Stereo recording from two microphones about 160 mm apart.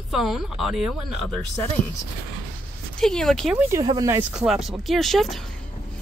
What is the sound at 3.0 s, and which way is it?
Speech, 5° left (ahead or behind).